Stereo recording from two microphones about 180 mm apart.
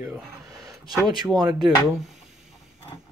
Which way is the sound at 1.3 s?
25° right (ahead or behind).